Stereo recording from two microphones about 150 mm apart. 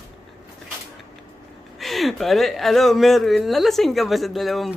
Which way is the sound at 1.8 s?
Centre (ahead or behind).